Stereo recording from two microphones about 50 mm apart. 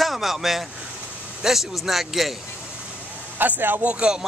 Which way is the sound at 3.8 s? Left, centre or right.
Right.